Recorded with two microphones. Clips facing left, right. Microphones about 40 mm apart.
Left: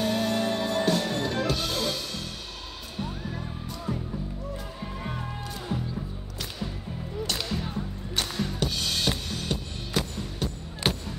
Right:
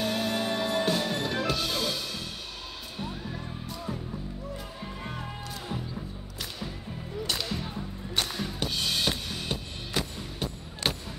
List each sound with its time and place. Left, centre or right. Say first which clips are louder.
0.0 s music: left 3 dB; centre
7.3 s music: left 2 dB; centre
10.8 s a sound: left 3 dB; centre